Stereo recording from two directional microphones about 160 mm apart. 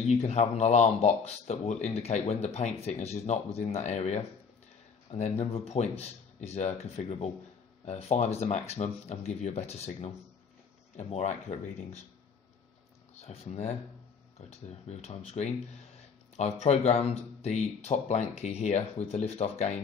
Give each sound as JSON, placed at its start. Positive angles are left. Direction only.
{"t": 0.0, "sound": "speech", "side_deg": 45}
{"t": 5.4, "sound": "speech", "side_deg": 40}
{"t": 13.1, "sound": "speech", "side_deg": 40}